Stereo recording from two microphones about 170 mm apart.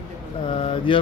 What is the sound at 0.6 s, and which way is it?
Speech, 30° left (ahead or behind).